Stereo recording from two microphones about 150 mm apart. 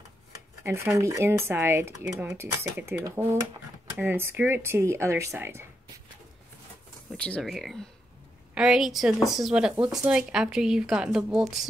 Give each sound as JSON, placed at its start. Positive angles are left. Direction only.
{"t": 0.7, "sound": "speech", "side_deg": -20}
{"t": 7.1, "sound": "a woman's voice", "side_deg": 5}